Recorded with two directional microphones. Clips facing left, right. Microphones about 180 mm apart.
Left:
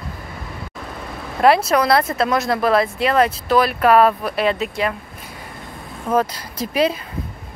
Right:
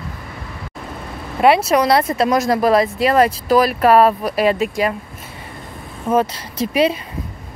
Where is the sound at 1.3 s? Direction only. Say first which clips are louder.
Right 1 dB; 5° right (ahead or behind).